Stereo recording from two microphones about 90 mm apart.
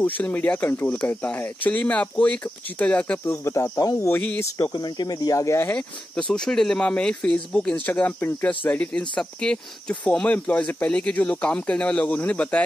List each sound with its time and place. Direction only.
0.0 s speech: 20° left (ahead or behind)
3.3 s speech: 30° left (ahead or behind)
4.1 s speech: 15° left (ahead or behind)
4.6 s speech: 50° left (ahead or behind); by 5.7 s 35° left (ahead or behind)
6.1 s speech: 5° left (ahead or behind)